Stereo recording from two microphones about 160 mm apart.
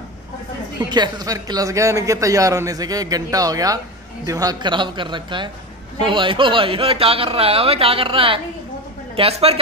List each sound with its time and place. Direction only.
0.8 s a man's voice: 25° right (ahead or behind)